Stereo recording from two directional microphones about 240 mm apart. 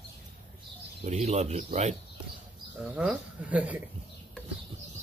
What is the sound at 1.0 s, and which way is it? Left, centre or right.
Speech, right.